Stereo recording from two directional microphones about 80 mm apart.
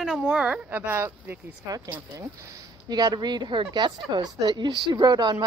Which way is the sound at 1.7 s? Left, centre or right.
Right.